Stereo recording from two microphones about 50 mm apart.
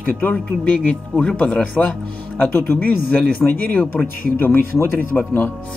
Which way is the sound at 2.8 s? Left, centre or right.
Left.